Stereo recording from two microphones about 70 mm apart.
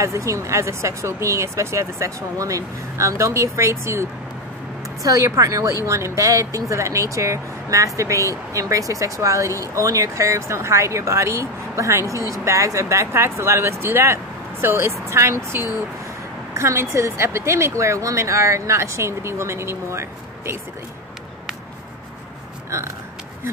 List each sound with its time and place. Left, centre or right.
0.0 s speech: right
16.5 s speech: right